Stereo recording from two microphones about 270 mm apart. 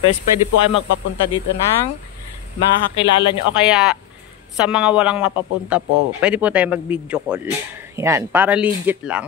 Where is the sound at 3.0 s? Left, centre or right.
Centre.